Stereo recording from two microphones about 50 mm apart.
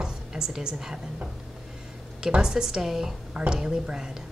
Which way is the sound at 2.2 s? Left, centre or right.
Centre.